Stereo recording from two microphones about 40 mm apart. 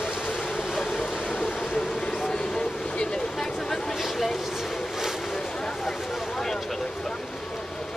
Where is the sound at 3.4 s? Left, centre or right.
Centre.